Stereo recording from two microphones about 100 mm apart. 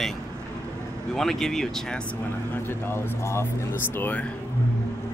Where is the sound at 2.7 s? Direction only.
25° left (ahead or behind).